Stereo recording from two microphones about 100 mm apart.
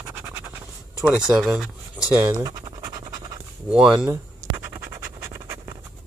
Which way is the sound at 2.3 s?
40° right (ahead or behind).